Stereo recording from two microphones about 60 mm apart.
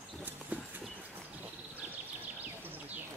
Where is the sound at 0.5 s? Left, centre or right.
Right.